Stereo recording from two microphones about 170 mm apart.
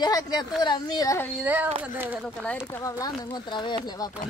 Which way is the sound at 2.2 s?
10° left (ahead or behind).